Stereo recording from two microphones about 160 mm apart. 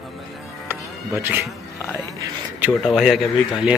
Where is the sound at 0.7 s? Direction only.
15° right (ahead or behind).